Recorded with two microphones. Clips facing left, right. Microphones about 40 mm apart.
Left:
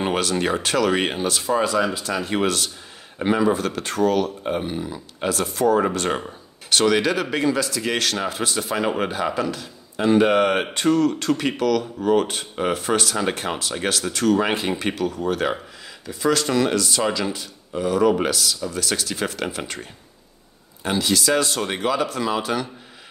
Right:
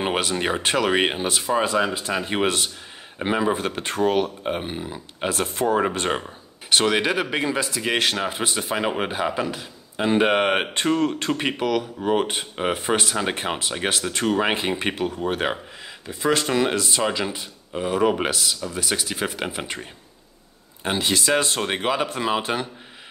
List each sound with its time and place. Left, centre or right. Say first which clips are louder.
0.0 s a man's voice: left 1 dB; centre
6.7 s a man's voice: left 1 dB; centre
18.7 s speech: left 1 dB; centre
20.8 s a man's voice: left 1 dB; right